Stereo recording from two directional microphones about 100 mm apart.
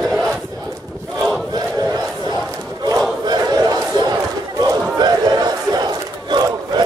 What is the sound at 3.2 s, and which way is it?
Battle cry, 45° right (ahead or behind).